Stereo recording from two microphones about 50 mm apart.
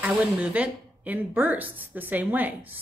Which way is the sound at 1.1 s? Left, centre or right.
Right.